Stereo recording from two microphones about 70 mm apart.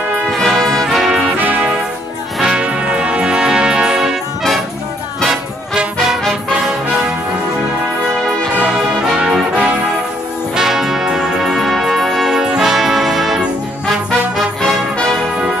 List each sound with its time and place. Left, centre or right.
0.3 s brass instrument: centre
1.4 s music: right
2.3 s music: centre
5.8 s music: centre
9.0 s music: centre